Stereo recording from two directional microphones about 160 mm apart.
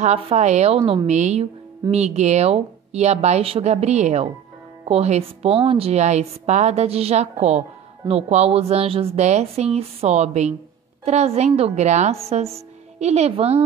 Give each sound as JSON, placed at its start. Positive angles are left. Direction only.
{"t": 0.0, "sound": "a woman's voice", "side_deg": -40}